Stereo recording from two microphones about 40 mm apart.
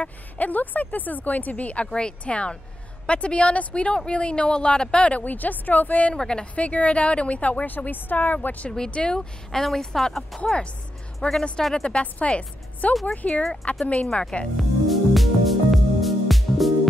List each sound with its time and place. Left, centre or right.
0.0 s speech: left
1.9 s a woman's voice: left
5.2 s speech: left
6.1 s a woman's voice: centre
6.4 s a woman's voice: left
7.6 s speech: left
8.6 s a woman's voice: centre
9.5 s speech: centre
10.4 s a woman's voice: left
11.1 s a woman's voice: centre
12.0 s a woman's voice: left
14.6 s music: centre